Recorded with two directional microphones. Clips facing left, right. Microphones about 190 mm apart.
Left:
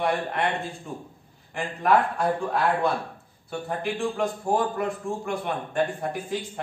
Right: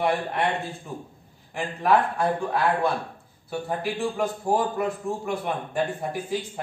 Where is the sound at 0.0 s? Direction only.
10° right (ahead or behind).